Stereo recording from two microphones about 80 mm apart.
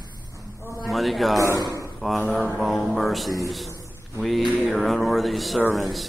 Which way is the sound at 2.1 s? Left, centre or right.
Centre.